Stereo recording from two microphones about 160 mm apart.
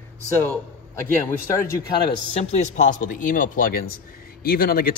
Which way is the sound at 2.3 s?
50° left (ahead or behind).